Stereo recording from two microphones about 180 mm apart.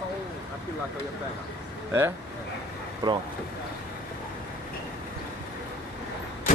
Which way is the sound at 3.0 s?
25° right (ahead or behind).